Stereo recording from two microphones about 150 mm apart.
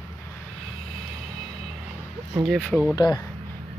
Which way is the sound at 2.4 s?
Centre (ahead or behind).